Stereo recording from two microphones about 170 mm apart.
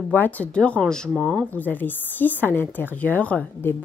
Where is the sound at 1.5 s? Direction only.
10° left (ahead or behind).